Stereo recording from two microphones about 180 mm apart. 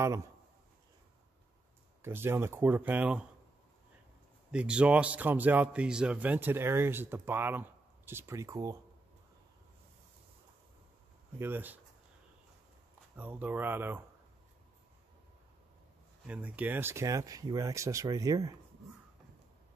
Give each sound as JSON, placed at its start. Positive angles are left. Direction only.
{"t": 0.0, "sound": "a man's voice", "side_deg": -15}
{"t": 2.0, "sound": "a man's voice", "side_deg": -15}
{"t": 4.5, "sound": "a man's voice", "side_deg": -5}
{"t": 11.3, "sound": "a man's voice", "side_deg": -10}
{"t": 13.1, "sound": "a man's voice", "side_deg": -10}
{"t": 16.3, "sound": "a man's voice", "side_deg": -10}